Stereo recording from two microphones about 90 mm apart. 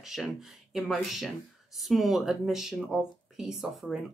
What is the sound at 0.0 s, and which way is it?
Speech, 5° right (ahead or behind).